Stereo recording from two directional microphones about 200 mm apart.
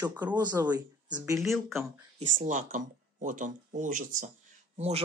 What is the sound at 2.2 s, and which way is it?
Speech, 35° right (ahead or behind).